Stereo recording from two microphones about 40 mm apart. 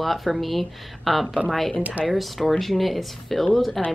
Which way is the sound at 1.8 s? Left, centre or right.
Right.